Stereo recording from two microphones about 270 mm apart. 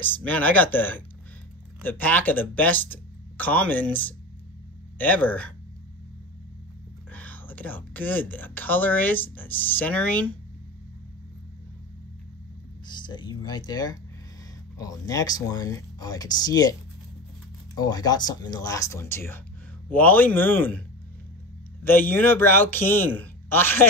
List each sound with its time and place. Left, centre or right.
0.0 s speech: centre
7.1 s speech: centre
12.8 s speech: centre
17.7 s speech: centre
21.8 s speech: centre